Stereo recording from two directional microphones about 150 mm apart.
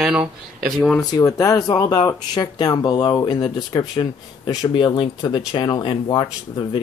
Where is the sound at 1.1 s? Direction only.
25° left (ahead or behind).